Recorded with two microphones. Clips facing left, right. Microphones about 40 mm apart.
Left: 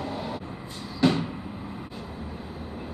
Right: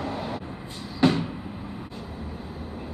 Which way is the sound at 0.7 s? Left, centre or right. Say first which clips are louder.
Even; centre.